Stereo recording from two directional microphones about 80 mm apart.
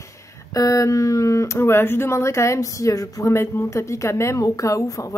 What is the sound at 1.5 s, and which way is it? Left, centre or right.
A woman's voice, left.